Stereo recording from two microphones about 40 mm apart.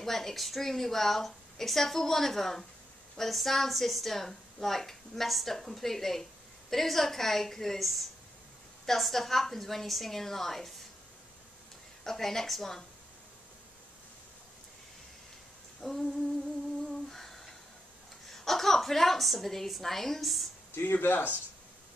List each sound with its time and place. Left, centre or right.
0.0 s a woman's voice: centre
12.0 s a woman's voice: centre
15.8 s a woman's voice: centre
17.1 s a sound: centre
18.3 s a woman's voice: centre
20.7 s speech: left